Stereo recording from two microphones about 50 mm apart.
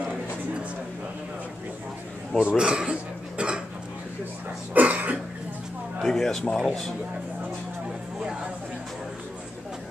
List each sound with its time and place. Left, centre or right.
2.4 s a sound: centre
4.7 s cough: right
6.0 s speech: centre